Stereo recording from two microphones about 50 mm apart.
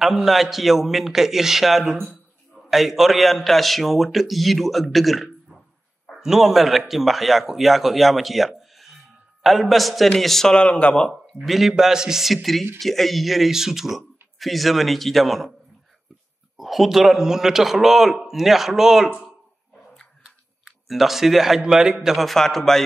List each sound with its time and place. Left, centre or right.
0.0 s a man's voice: centre
10.5 s speech: left
11.3 s a man's voice: centre
16.5 s a man's voice: centre
20.6 s a man's voice: centre